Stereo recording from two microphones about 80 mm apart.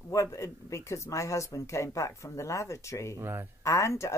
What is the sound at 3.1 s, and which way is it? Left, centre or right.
Speech, right.